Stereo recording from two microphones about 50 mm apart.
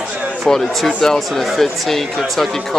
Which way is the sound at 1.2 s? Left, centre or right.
Centre.